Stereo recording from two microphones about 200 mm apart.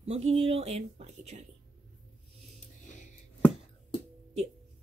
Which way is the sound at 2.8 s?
40° left (ahead or behind).